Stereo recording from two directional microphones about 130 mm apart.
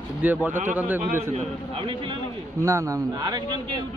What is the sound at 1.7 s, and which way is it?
Speech, 40° right (ahead or behind).